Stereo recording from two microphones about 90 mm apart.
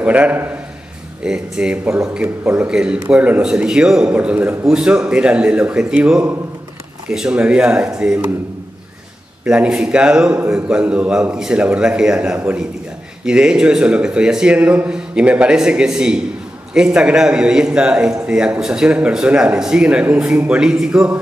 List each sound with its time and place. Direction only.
0.0 s a man's voice: 15° right (ahead or behind)
9.4 s a man's voice: 10° right (ahead or behind)